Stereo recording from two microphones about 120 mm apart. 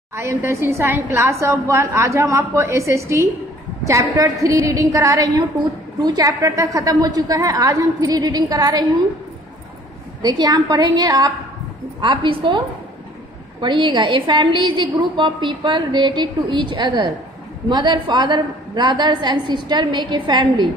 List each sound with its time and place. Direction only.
0.1 s a woman's voice: 20° right (ahead or behind)
10.2 s a woman's voice: 35° right (ahead or behind)